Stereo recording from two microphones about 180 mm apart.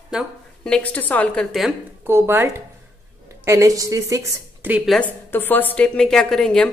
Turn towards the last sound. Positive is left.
turn(degrees=5)  # may be behind; listen again after turning